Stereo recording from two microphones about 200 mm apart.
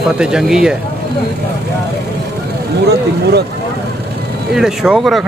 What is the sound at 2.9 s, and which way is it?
Speech, 55° right (ahead or behind).